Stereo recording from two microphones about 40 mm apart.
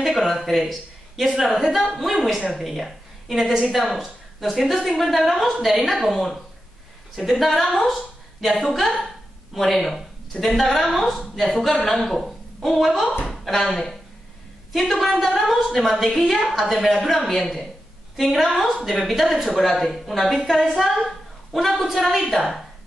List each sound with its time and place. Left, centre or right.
0.3 s a woman's voice: centre
7.9 s a sound: centre
8.5 s a woman's voice: centre